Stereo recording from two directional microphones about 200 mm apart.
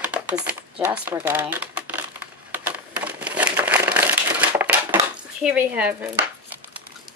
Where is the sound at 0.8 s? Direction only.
10° right (ahead or behind).